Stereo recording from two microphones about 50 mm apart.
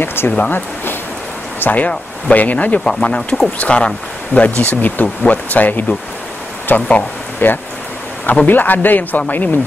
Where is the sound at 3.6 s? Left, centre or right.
Left.